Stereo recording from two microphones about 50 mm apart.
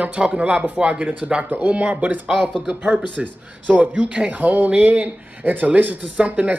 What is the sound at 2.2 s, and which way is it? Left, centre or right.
A man's voice, right.